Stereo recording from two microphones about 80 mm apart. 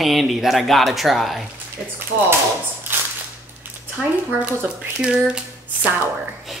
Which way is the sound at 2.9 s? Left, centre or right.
Right.